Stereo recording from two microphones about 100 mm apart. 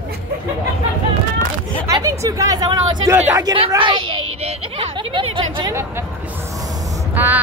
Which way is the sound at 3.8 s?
55° right (ahead or behind).